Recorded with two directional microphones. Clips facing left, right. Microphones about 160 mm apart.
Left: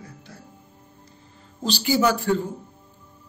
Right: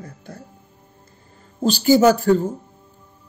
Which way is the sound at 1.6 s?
45° right (ahead or behind).